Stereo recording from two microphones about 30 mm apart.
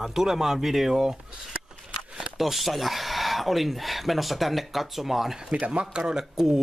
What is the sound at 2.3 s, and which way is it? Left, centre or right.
Speech, centre.